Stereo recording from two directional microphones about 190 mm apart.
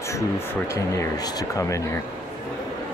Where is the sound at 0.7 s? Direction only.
15° left (ahead or behind).